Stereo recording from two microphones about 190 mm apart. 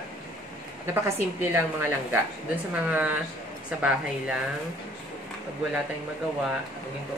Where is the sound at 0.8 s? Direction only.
10° right (ahead or behind).